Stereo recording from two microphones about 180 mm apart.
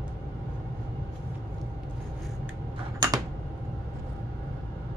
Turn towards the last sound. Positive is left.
turn(degrees=-20)  # may be behind; listen again after turning